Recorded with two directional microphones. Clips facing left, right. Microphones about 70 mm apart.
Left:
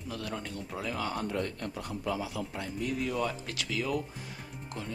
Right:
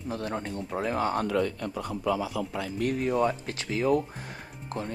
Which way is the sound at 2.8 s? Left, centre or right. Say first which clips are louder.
Right 6 dB; right.